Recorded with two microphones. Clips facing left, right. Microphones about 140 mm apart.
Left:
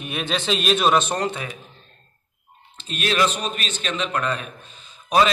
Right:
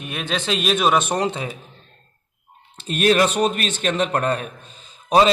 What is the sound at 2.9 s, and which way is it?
A man's voice, 45° right (ahead or behind).